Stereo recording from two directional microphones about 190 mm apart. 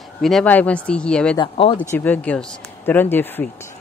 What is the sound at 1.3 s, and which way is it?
Speech, 25° left (ahead or behind).